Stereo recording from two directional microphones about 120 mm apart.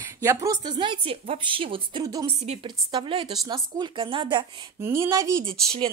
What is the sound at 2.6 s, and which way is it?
A woman's voice, 40° right (ahead or behind).